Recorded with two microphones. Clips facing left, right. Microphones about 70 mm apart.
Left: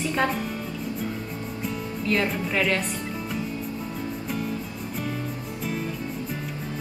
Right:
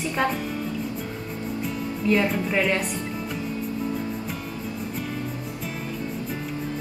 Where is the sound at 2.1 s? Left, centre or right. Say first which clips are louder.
Right 4 dB; centre.